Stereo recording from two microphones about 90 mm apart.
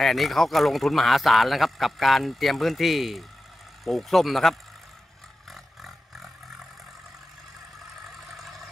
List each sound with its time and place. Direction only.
0.0 s speech: centre (ahead or behind)
5.5 s a sound: centre (ahead or behind)
8.3 s vehicle: centre (ahead or behind)